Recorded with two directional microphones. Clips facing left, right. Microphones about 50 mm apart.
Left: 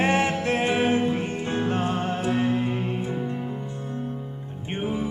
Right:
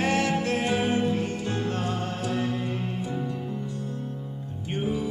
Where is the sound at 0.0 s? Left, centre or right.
Left.